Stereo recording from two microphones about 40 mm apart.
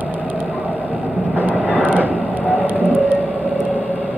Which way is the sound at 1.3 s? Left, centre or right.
Right.